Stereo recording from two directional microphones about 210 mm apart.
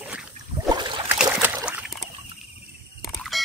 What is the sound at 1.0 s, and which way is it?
Boat, 5° right (ahead or behind).